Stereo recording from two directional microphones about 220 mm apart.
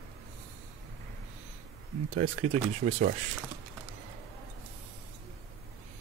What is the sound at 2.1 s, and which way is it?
Speech, 30° right (ahead or behind).